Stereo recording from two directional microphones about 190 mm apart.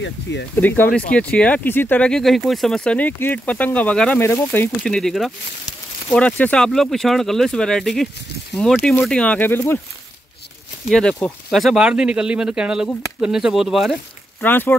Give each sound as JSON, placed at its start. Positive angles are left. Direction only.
{"t": 0.0, "sound": "speech", "side_deg": 70}
{"t": 0.6, "sound": "speech", "side_deg": 10}
{"t": 10.9, "sound": "speech", "side_deg": 5}
{"t": 14.4, "sound": "speech", "side_deg": 10}